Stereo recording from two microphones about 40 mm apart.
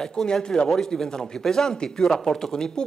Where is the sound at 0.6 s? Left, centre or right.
Centre.